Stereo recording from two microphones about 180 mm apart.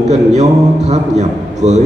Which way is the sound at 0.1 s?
40° right (ahead or behind).